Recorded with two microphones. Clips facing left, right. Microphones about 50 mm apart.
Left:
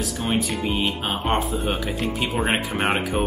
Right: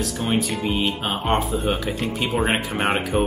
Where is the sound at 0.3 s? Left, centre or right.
Centre.